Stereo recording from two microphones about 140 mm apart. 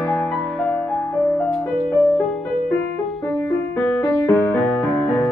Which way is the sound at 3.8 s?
15° left (ahead or behind).